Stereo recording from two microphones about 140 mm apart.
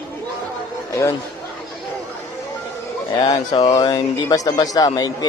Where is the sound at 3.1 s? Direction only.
30° left (ahead or behind).